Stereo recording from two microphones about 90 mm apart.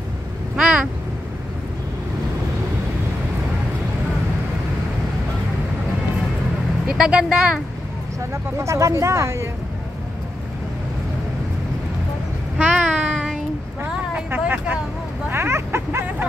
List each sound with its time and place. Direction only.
0.6 s a sound: 10° right (ahead or behind)
6.9 s speech: 10° right (ahead or behind)
8.3 s speech: 35° right (ahead or behind)
12.5 s child singing: 10° right (ahead or behind)
14.1 s speech: 20° right (ahead or behind)
15.2 s a sound: 25° right (ahead or behind)